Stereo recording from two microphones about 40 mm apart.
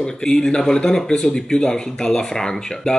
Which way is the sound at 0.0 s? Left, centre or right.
Centre.